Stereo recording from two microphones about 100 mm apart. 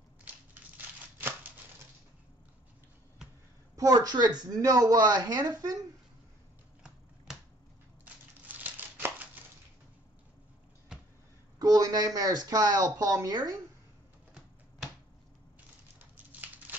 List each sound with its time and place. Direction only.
0.3 s crushing: 15° right (ahead or behind)
0.7 s a sound: 20° right (ahead or behind)
3.7 s speech: 40° right (ahead or behind)
8.0 s crumpling: 15° right (ahead or behind)
11.5 s speech: 40° right (ahead or behind)
16.0 s a sound: 15° right (ahead or behind)